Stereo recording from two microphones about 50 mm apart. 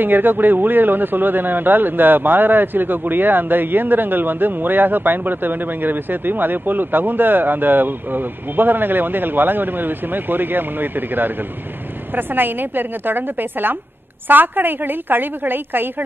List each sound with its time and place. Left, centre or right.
0.0 s a man's voice: right